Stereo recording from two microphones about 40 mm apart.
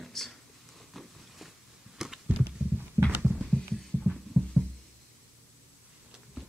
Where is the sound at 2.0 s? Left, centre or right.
Centre.